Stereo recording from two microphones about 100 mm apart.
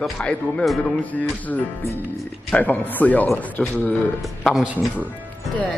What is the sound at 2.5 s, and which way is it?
Speech, 15° left (ahead or behind).